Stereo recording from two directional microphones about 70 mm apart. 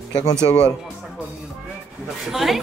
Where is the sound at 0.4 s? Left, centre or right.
Left.